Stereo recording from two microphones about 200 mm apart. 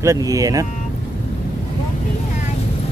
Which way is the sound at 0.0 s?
15° right (ahead or behind).